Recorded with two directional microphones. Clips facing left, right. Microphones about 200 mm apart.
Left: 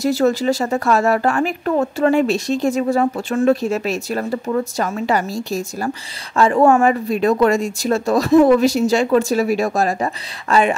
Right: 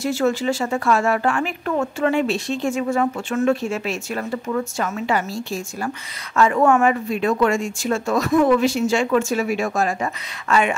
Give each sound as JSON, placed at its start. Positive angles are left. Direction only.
{"t": 0.0, "sound": "speech", "side_deg": 40}